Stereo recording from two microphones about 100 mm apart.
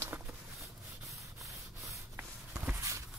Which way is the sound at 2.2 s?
25° right (ahead or behind).